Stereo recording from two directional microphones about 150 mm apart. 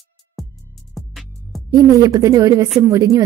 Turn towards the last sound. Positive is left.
turn(degrees=-20)  # may be behind; listen again after turning